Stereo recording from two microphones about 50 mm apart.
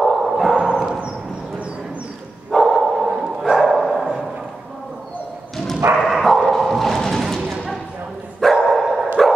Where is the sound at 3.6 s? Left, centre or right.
Centre.